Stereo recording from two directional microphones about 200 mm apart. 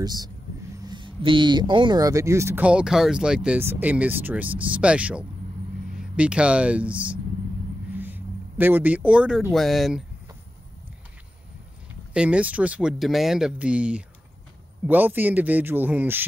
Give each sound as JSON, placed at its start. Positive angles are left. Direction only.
{"t": 0.0, "sound": "speech", "side_deg": -20}
{"t": 12.1, "sound": "speech", "side_deg": -5}